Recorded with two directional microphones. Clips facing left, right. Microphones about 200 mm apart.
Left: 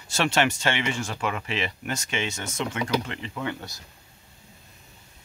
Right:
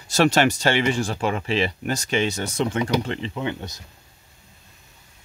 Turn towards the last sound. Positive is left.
turn(degrees=-20)  # may be behind; listen again after turning